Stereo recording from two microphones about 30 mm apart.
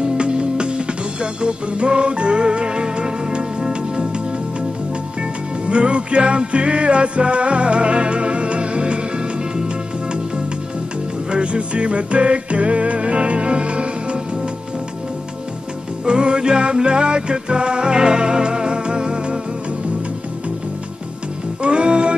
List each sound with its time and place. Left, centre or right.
0.0 s music: right
5.7 s music: right
11.2 s music: right
16.1 s music: right
21.6 s music: right